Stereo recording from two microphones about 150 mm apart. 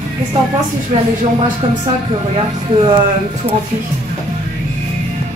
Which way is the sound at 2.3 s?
35° right (ahead or behind).